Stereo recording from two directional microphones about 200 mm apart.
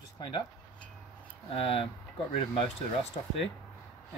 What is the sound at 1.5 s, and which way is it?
Speech, 30° left (ahead or behind).